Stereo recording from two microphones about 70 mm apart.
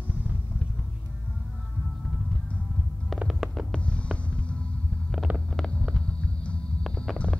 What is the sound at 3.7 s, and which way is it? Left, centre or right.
Hum, centre.